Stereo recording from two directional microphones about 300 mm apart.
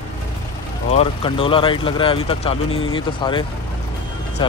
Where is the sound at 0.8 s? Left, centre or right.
Centre.